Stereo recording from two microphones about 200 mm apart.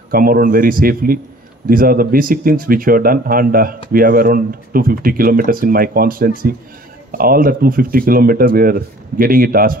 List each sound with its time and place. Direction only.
0.1 s speech: 45° right (ahead or behind)